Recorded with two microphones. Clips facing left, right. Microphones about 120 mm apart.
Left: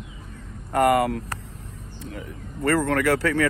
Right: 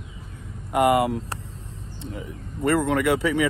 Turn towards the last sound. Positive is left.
turn(degrees=-20)  # may be behind; listen again after turning